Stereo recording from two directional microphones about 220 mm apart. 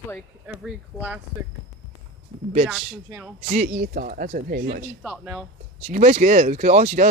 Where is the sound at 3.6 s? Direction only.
45° right (ahead or behind).